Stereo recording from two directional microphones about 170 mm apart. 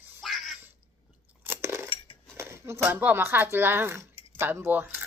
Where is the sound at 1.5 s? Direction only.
15° right (ahead or behind).